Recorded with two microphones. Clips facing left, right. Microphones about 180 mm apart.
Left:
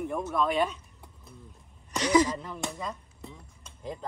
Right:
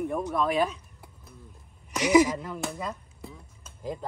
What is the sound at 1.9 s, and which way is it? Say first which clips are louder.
Speech: right 3 dB; 10° right (ahead or behind).